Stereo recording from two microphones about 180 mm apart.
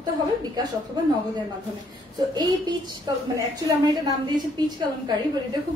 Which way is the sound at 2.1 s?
25° right (ahead or behind).